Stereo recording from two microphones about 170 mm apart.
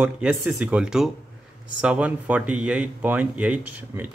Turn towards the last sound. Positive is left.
turn(degrees=-10)  # may be behind; listen again after turning